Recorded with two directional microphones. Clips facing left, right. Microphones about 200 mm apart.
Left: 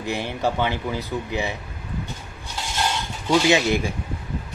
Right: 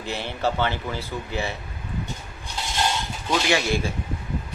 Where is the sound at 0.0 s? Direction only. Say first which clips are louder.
Left 2 dB; 15° left (ahead or behind).